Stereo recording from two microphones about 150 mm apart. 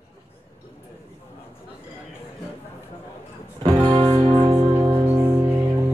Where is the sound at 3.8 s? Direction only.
40° right (ahead or behind).